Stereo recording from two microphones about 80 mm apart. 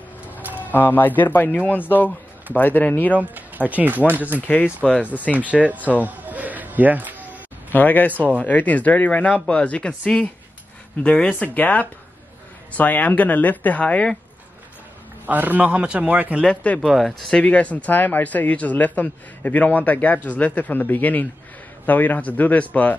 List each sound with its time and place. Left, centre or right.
0.3 s a sound: right
0.7 s speech: left
3.2 s speech: right
4.4 s speech: centre
6.0 s a sound: centre
7.7 s speech: left
8.1 s speech: centre
8.4 s speech: centre
15.2 s speech: right
16.4 s speech: centre
16.8 s speech: centre; by 22.9 s left